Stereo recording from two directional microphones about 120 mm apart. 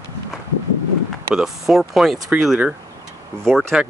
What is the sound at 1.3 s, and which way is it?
Speech, centre (ahead or behind).